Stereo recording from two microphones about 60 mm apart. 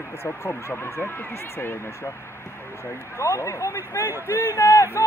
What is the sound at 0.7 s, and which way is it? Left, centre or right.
Speech, left.